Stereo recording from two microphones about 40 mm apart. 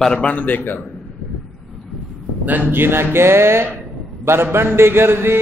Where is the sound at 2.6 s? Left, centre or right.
Right.